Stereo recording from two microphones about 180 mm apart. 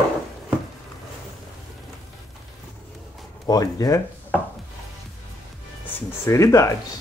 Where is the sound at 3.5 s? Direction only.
20° left (ahead or behind).